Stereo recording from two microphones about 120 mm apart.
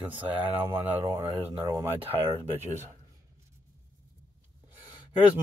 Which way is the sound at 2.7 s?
75° right (ahead or behind).